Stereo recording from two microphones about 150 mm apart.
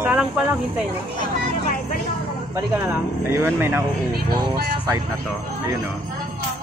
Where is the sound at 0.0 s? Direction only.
10° right (ahead or behind).